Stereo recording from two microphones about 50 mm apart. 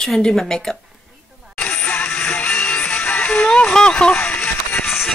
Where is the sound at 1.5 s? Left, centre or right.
Left.